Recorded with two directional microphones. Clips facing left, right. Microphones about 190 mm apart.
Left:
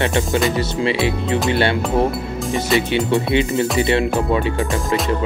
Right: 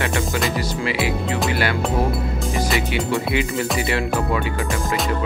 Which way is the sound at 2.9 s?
25° left (ahead or behind).